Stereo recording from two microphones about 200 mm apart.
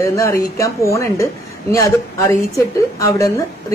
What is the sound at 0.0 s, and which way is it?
A woman's voice, 15° left (ahead or behind).